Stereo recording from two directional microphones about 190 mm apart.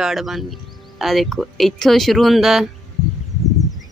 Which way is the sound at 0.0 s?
Centre (ahead or behind).